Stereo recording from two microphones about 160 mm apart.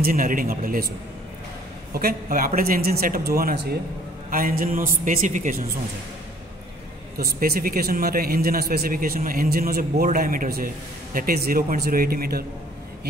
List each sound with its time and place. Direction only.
0.0 s speech: 60° right (ahead or behind)
2.0 s speech: 65° right (ahead or behind)
7.2 s a man's voice: 70° right (ahead or behind)